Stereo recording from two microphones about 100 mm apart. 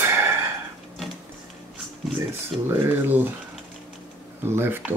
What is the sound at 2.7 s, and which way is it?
Speech, 20° right (ahead or behind).